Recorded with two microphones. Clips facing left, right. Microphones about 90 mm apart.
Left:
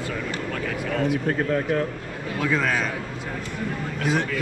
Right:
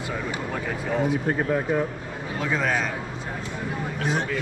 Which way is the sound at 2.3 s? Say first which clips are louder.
Left 1 dB; 30° right (ahead or behind).